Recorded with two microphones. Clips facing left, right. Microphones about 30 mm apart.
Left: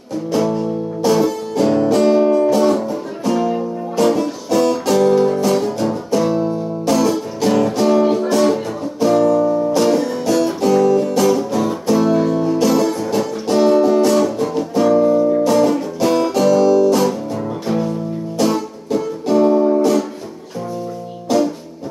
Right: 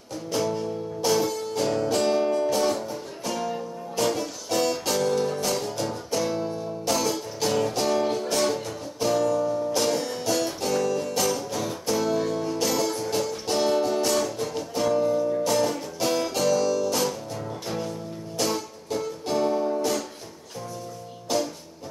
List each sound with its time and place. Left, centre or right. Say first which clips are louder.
0.3 s music: left 8 dB; left
3.9 s music: left 10 dB; left
9.4 s music: left 9 dB; left
9.8 s music: left 10 dB; centre
12.5 s music: left 9 dB; centre
14.1 s music: left 10 dB; left